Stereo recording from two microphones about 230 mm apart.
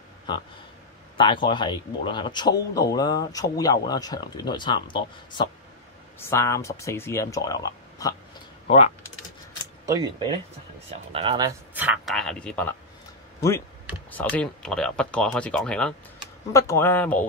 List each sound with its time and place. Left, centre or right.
1.1 s speech: left
8.6 s typing: left
9.8 s speech: centre
11.7 s speech: centre
14.1 s speech: centre